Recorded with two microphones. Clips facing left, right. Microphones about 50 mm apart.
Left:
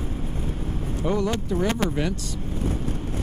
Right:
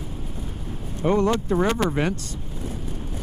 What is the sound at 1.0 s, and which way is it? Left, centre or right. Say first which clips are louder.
Speech: right 5 dB; right.